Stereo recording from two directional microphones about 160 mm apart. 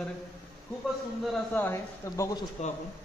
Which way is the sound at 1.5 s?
15° left (ahead or behind).